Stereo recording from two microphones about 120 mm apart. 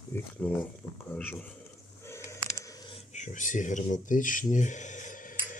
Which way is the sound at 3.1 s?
90° left.